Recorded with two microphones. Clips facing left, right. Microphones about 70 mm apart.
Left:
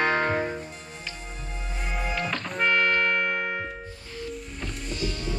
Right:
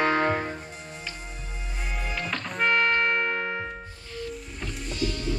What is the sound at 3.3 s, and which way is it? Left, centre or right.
Music, centre.